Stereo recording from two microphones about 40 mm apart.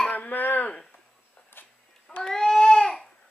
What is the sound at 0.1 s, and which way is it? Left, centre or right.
Throat clearing, left.